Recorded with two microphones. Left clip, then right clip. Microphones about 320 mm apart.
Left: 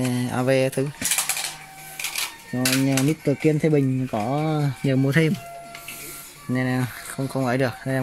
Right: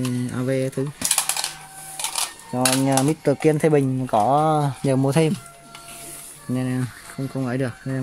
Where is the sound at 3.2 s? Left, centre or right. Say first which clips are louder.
Right 3 dB; right.